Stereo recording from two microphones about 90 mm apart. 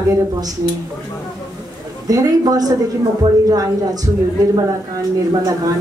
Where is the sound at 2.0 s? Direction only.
45° right (ahead or behind).